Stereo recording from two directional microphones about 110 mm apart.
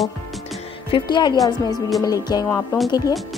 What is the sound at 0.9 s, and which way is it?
A woman's voice, 45° left (ahead or behind).